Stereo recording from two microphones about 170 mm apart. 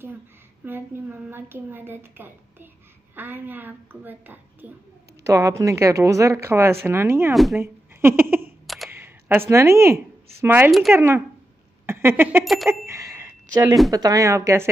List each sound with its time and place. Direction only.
0.7 s speech: 10° right (ahead or behind)
8.6 s a sound: centre (ahead or behind)
8.9 s a sound: 15° right (ahead or behind)
9.5 s speech: 15° right (ahead or behind)
10.7 s speech: centre (ahead or behind)
11.0 s speech: 10° right (ahead or behind)
11.8 s a sound: 15° right (ahead or behind)
12.6 s bicycle bell: 15° right (ahead or behind)
13.8 s a woman's voice: 20° right (ahead or behind)